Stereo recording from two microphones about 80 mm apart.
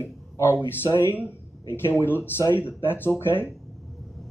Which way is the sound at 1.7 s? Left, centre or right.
Left.